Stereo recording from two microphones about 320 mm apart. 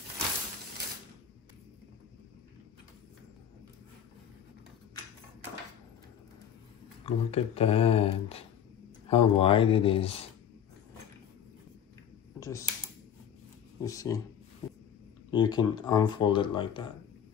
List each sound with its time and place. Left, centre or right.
7.1 s speech: centre
12.4 s computer keyboard: centre
13.8 s speech: centre
15.3 s speech: centre